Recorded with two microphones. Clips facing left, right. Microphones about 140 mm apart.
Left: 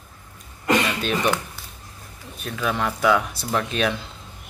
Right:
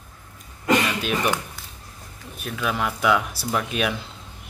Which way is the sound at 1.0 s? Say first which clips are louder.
Left 1 dB; 5° right (ahead or behind).